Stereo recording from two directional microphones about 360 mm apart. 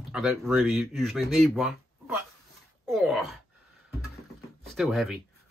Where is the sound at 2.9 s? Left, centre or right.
Centre.